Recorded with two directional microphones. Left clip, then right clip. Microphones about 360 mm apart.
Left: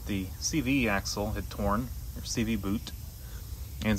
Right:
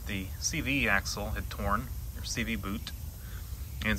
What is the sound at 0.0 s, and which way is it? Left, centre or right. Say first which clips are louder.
Speech: left 1 dB; centre.